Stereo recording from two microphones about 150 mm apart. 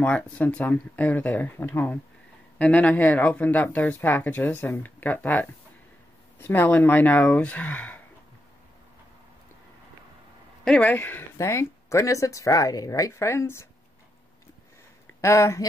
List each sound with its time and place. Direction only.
0.0 s speech: 10° left (ahead or behind)
10.6 s a woman's voice: 10° left (ahead or behind)
15.1 s speech: 20° left (ahead or behind)